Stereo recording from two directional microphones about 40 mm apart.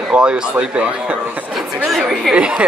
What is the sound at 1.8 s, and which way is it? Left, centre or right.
Speech, centre.